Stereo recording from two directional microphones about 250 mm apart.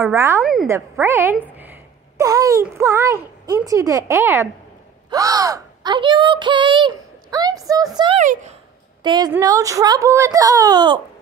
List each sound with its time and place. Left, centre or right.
0.0 s speech: centre
0.4 s a woman's voice: centre
8.2 s speech: right
9.0 s a woman's voice: centre